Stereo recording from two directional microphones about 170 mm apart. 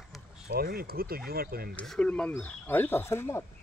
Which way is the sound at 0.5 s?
65° right (ahead or behind).